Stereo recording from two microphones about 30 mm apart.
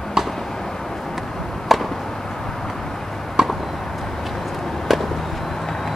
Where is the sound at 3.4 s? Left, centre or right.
Right.